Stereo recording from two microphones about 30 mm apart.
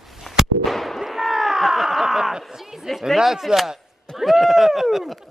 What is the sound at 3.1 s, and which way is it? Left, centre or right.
Speech, centre.